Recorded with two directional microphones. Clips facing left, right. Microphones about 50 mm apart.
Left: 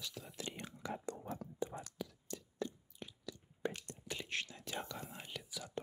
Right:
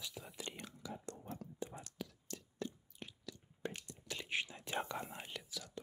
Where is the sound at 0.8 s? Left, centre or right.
Left.